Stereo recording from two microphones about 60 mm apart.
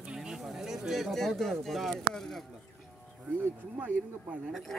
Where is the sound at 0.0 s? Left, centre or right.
Centre.